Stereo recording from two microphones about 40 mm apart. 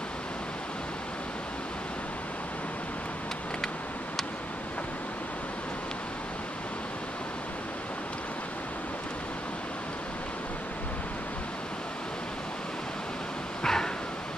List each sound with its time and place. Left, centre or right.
13.6 s dog: centre